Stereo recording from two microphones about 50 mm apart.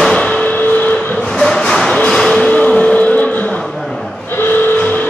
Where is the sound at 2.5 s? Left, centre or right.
Left.